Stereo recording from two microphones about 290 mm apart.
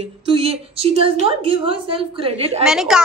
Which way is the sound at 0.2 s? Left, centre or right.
Centre.